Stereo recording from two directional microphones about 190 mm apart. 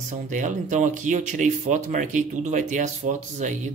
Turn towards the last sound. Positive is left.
turn(degrees=-40)  # may be behind; listen again after turning